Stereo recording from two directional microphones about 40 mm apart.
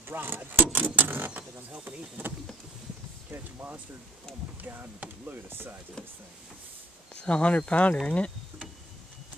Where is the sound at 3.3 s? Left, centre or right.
Right.